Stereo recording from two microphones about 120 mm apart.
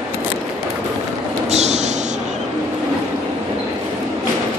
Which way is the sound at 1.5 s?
65° right (ahead or behind).